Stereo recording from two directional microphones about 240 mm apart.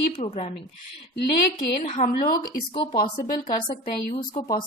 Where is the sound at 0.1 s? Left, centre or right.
Left.